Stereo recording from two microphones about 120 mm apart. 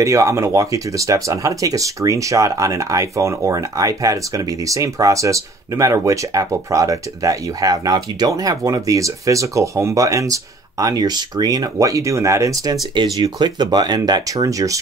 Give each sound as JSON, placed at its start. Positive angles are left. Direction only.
{"t": 0.0, "sound": "speech", "side_deg": -25}
{"t": 12.9, "sound": "speech", "side_deg": -40}